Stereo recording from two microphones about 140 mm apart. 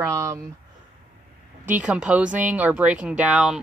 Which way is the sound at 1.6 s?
10° right (ahead or behind).